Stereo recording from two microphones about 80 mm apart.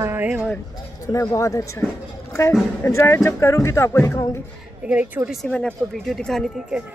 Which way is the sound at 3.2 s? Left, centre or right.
Left.